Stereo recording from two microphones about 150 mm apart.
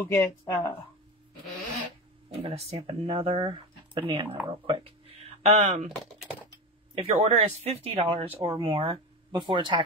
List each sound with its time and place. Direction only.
0.0 s speech: 20° left (ahead or behind)
2.3 s speech: 45° right (ahead or behind)
7.0 s speech: 45° right (ahead or behind)